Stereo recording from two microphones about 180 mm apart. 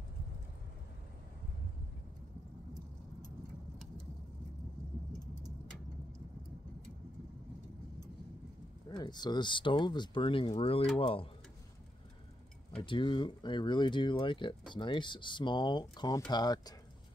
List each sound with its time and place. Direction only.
8.8 s speech: 25° left (ahead or behind)
12.8 s speech: 25° left (ahead or behind)